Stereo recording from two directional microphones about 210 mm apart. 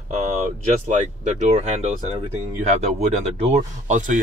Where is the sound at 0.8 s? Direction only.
35° right (ahead or behind).